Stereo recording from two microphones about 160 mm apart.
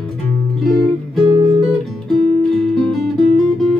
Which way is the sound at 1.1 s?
30° right (ahead or behind).